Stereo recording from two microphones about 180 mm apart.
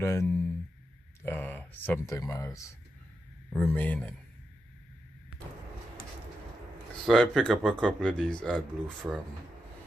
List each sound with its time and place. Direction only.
0.0 s speech: 15° left (ahead or behind)
7.1 s speech: 5° left (ahead or behind)